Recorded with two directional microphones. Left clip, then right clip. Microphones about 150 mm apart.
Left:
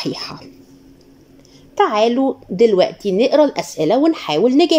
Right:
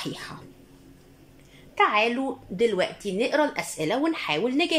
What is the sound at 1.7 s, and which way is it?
A woman's voice, 40° left (ahead or behind).